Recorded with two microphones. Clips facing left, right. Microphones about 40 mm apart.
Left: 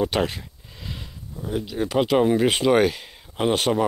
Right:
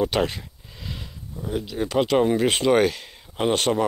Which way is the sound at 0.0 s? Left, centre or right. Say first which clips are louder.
Even; centre.